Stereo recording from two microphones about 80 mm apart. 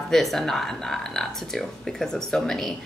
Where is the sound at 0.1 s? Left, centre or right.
Centre.